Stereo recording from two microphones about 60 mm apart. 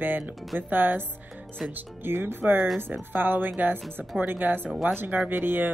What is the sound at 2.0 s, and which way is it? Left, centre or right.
A woman's voice, right.